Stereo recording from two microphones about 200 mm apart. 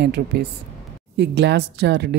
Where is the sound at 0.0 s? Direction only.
55° right (ahead or behind).